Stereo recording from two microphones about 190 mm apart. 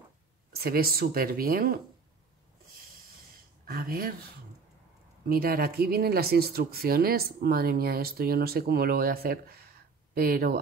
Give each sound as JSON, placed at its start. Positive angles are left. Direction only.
{"t": 0.5, "sound": "speech", "side_deg": -55}
{"t": 3.6, "sound": "speech", "side_deg": -50}
{"t": 5.3, "sound": "speech", "side_deg": -50}